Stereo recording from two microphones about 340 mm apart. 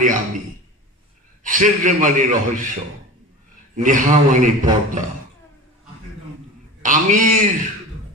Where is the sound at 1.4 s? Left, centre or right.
Right.